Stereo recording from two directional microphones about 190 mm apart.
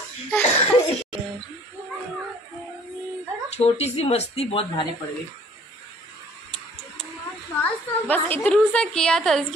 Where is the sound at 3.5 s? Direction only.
35° left (ahead or behind).